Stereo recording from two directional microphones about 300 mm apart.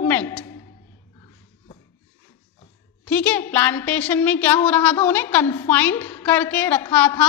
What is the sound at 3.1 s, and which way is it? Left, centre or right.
A woman's voice, centre.